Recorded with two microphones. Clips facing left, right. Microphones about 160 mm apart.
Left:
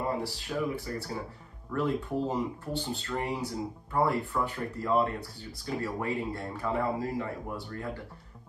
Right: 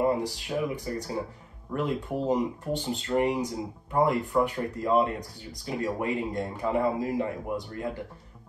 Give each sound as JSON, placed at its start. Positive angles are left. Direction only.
{"t": 0.2, "sound": "speech", "side_deg": -15}